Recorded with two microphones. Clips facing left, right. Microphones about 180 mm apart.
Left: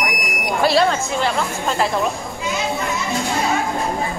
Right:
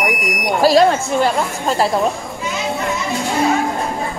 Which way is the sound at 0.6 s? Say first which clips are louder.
Right 5 dB; 45° right (ahead or behind).